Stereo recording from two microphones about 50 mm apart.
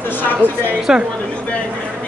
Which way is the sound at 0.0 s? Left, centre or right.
Left.